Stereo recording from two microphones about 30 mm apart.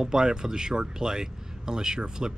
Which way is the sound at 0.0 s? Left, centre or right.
Right.